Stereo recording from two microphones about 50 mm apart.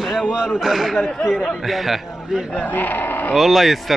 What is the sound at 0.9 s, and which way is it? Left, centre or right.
Speech, centre.